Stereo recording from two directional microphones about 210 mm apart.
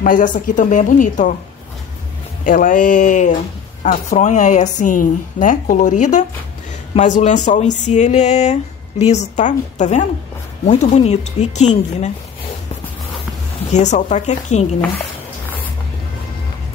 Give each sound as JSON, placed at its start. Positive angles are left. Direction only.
{"t": 0.0, "sound": "speech", "side_deg": 40}
{"t": 2.4, "sound": "speech", "side_deg": 40}
{"t": 13.7, "sound": "speech", "side_deg": 35}